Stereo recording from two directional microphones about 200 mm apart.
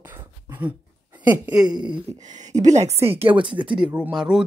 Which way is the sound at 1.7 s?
25° right (ahead or behind).